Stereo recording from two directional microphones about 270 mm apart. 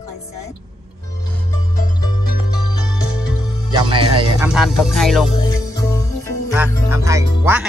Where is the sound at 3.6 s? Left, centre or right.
Centre.